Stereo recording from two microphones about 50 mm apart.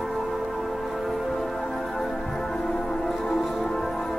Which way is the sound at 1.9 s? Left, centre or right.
Centre.